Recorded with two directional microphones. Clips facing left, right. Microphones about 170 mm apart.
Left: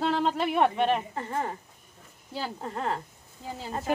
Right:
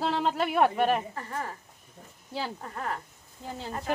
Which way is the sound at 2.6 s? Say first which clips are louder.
Left 4 dB; 25° left (ahead or behind).